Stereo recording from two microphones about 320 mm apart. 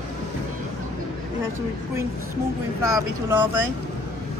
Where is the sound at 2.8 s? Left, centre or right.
Centre.